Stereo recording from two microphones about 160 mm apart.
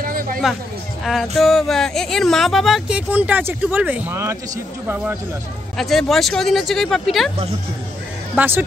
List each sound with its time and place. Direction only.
0.0 s chatter: 60° right (ahead or behind)
1.0 s speech: centre (ahead or behind)
5.8 s speech: centre (ahead or behind)
8.4 s speech: 10° right (ahead or behind)